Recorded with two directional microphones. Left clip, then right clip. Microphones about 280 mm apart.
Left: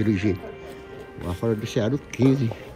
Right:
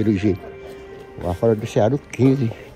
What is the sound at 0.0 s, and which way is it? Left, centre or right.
Speech, centre.